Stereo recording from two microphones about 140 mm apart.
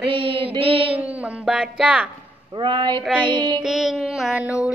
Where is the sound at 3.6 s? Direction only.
5° right (ahead or behind).